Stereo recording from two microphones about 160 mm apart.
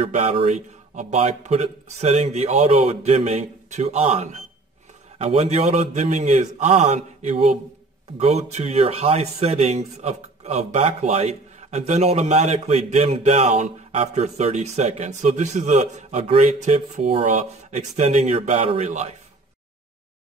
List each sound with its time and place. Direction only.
0.0 s speech: 45° right (ahead or behind)